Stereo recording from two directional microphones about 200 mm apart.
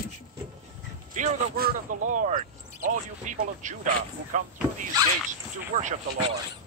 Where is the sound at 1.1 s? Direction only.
45° right (ahead or behind).